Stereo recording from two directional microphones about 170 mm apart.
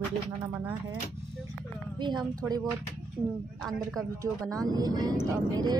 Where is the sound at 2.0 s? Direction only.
25° right (ahead or behind).